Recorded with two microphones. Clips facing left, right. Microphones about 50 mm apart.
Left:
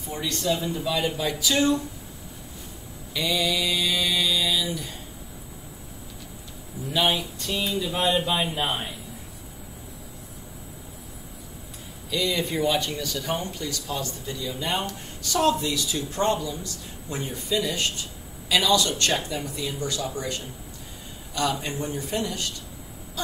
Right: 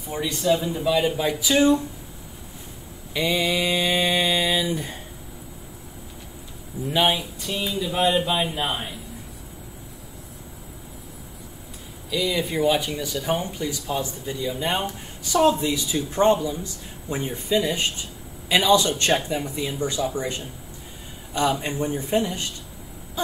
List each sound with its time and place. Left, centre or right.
0.1 s speech: centre
3.1 s mantra: right
6.9 s speech: centre
7.2 s speech: centre
12.1 s speech: centre